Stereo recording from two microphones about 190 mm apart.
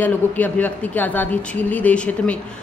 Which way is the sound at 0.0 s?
10° left (ahead or behind).